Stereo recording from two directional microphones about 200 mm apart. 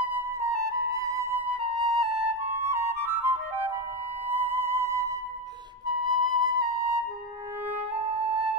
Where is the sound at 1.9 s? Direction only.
Centre (ahead or behind).